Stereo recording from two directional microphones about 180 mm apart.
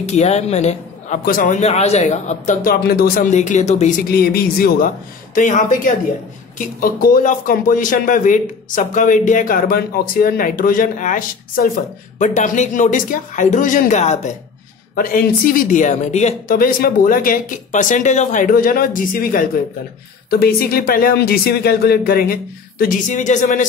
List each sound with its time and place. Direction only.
0.0 s speech: 40° left (ahead or behind)
1.2 s a man's voice: 50° left (ahead or behind)
3.3 s speech: 40° left (ahead or behind)
4.1 s speech: 55° left (ahead or behind)
5.3 s a man's voice: 45° left (ahead or behind)
6.8 s a man's voice: 50° left (ahead or behind)
15.0 s a man's voice: 50° left (ahead or behind)
16.5 s a man's voice: 55° left (ahead or behind)